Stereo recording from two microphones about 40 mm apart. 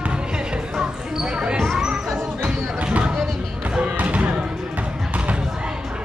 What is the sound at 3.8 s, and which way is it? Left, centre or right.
Basketball bounce, right.